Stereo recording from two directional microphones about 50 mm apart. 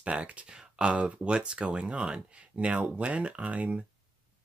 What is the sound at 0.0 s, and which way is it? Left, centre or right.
Speech, right.